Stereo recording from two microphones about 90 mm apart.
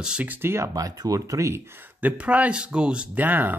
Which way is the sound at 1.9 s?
15° right (ahead or behind).